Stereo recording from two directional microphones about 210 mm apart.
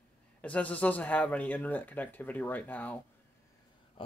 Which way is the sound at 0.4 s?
5° left (ahead or behind).